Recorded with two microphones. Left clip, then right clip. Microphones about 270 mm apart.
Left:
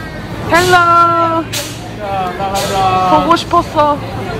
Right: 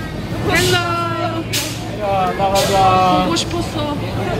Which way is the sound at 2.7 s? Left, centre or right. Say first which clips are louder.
Left 4 dB; right.